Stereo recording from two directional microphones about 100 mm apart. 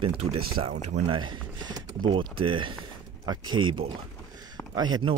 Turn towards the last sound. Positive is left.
turn(degrees=-40)  # may be behind; listen again after turning